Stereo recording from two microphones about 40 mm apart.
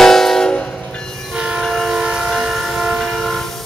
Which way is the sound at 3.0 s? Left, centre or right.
Centre.